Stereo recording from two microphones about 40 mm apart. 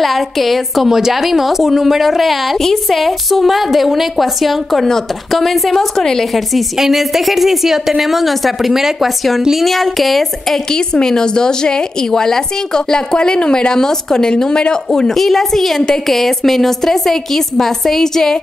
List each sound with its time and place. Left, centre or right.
0.0 s a woman's voice: centre
0.8 s a woman's voice: centre
6.5 s a woman's voice: centre
9.7 s a woman's voice: centre
10.7 s speech: centre
14.9 s a woman's voice: centre